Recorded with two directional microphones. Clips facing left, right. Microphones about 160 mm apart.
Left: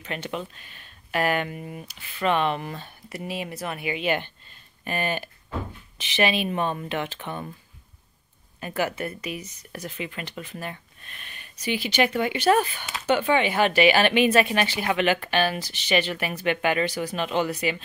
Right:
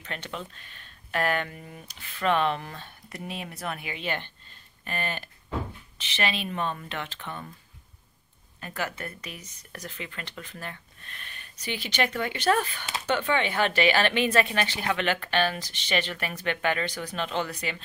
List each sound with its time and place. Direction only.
0.0 s speech: 10° left (ahead or behind)
8.5 s speech: 10° left (ahead or behind)